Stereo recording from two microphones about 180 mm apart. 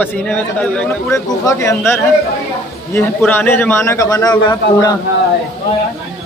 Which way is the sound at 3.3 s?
10° left (ahead or behind).